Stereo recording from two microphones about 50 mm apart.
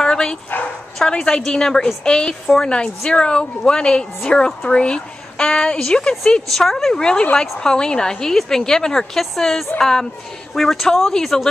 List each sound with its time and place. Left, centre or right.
0.0 s dog: centre
0.9 s a woman's voice: centre
6.5 s a woman's voice: centre